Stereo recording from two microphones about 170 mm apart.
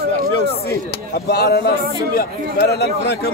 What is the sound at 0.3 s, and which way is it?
A man's voice, 75° left (ahead or behind).